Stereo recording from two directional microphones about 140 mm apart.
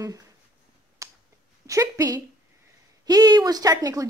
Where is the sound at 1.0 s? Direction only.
20° right (ahead or behind).